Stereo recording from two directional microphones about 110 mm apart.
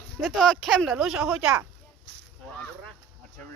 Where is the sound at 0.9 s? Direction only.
10° right (ahead or behind).